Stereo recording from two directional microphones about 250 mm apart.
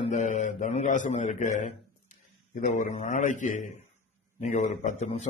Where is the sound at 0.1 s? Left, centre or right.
Left.